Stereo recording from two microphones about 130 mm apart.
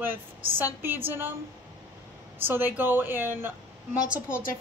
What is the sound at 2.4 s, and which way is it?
A woman's voice, 15° right (ahead or behind).